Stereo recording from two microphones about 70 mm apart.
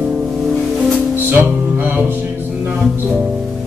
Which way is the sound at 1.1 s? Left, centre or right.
Right.